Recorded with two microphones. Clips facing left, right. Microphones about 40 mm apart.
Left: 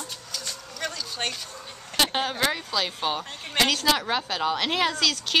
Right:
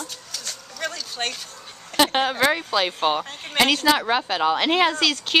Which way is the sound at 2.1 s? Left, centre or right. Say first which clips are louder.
Right 5 dB; centre.